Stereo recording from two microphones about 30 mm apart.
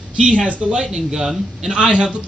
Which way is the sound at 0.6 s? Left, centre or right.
Centre.